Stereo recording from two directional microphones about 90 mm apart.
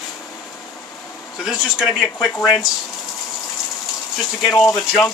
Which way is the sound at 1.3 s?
5° right (ahead or behind).